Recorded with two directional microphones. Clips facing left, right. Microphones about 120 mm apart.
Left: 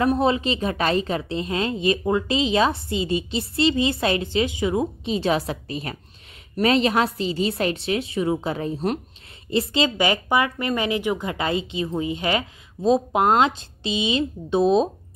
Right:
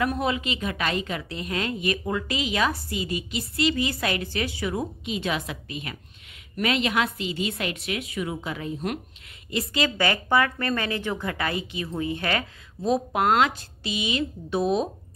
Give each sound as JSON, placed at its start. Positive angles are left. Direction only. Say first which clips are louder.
{"t": 0.0, "sound": "a woman's voice", "louder": "left 6 dB", "side_deg": 30}